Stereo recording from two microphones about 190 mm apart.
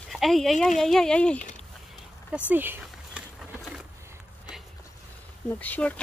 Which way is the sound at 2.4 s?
10° right (ahead or behind).